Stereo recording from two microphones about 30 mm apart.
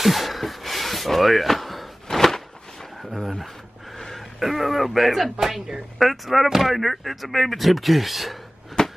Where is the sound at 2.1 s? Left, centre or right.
Centre.